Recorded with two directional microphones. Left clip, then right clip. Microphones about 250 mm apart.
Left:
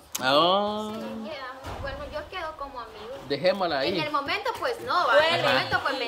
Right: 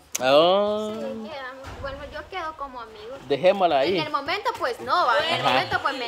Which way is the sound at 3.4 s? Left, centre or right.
Centre.